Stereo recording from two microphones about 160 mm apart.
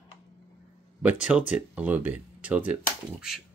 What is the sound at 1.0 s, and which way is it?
Speech, 10° right (ahead or behind).